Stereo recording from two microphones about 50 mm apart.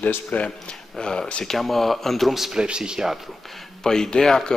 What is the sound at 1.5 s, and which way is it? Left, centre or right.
Speech, centre.